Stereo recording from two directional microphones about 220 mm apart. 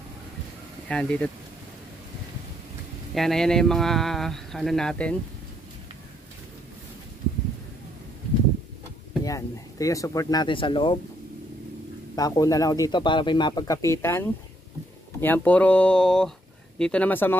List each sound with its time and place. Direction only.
0.8 s speech: 5° left (ahead or behind)
3.2 s speech: centre (ahead or behind)
9.2 s speech: 15° left (ahead or behind)
12.2 s speech: 15° left (ahead or behind)